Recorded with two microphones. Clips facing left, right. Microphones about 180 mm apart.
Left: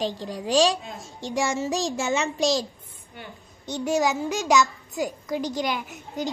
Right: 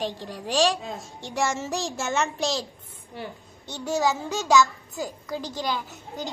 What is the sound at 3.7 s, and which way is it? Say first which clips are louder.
A child's voice: left 2 dB; 15° left (ahead or behind).